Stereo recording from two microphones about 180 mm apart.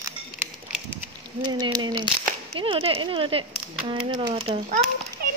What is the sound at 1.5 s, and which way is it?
Speech, 25° right (ahead or behind).